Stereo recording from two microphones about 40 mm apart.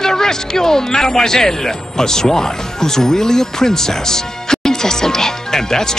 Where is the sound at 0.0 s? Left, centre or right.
Centre.